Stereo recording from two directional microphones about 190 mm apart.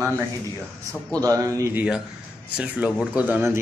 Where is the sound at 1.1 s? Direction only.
20° right (ahead or behind).